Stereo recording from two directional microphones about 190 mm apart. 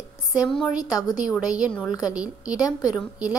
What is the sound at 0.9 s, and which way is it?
Speech, 20° left (ahead or behind).